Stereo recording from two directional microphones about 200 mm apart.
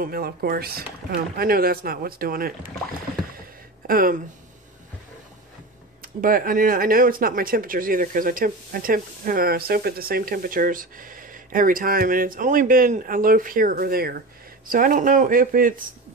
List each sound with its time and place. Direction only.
0.0 s speech: 50° right (ahead or behind)
3.8 s speech: 45° right (ahead or behind)
6.2 s speech: 45° right (ahead or behind)